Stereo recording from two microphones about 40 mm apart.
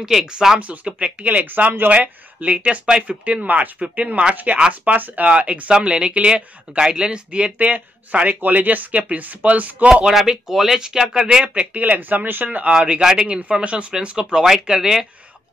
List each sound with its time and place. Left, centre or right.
0.0 s speech: centre
0.6 s speech: right
5.3 s speech: right
7.5 s speech: right
8.4 s speech: right
10.1 s speech: centre
11.4 s speech: right
11.8 s speech: right
13.0 s speech: right